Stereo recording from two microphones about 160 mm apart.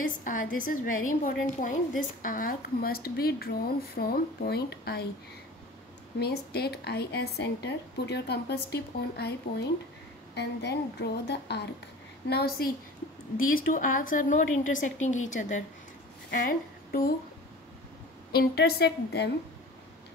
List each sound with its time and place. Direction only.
0.0 s a woman's voice: 55° left (ahead or behind); by 5.0 s 80° left
6.1 s a woman's voice: 80° left
13.4 s a woman's voice: 60° left (ahead or behind)
16.3 s a sound: 60° left (ahead or behind)
18.3 s speech: 80° left